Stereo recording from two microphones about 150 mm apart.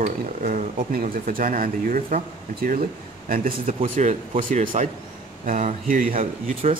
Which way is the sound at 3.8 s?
50° right (ahead or behind).